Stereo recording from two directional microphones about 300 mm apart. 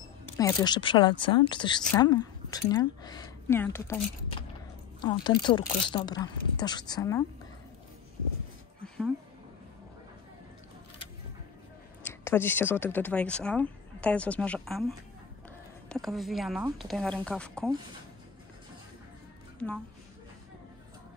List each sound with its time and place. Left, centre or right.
0.4 s speech: centre
5.0 s speech: centre
8.8 s a sound: centre
12.0 s speech: centre